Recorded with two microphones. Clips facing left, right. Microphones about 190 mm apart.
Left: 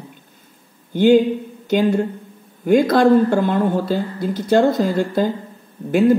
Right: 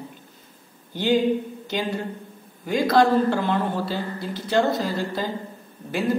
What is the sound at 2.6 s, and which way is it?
Speech, 50° left (ahead or behind).